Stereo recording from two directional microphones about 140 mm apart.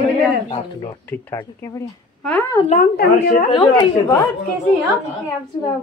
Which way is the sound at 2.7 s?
80° left.